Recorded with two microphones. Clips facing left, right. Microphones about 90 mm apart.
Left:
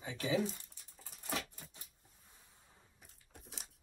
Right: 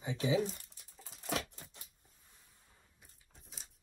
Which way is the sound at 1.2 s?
75° right (ahead or behind).